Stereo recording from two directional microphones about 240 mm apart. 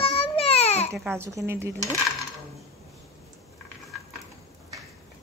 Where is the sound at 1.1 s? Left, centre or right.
Centre.